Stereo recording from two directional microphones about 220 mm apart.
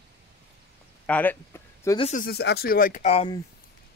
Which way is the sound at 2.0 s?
30° left (ahead or behind).